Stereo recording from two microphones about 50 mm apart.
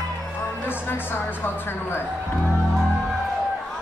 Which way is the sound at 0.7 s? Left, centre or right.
Left.